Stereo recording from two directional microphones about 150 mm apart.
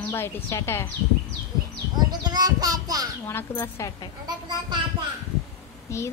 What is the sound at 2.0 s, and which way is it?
Speech, 25° right (ahead or behind).